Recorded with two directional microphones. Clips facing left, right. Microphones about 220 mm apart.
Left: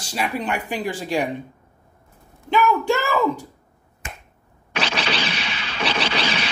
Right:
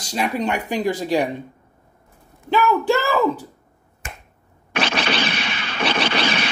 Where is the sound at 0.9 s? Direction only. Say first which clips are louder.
Right 3 dB; 35° right (ahead or behind).